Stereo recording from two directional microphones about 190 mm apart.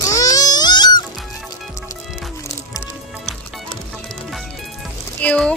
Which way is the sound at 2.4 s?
15° left (ahead or behind).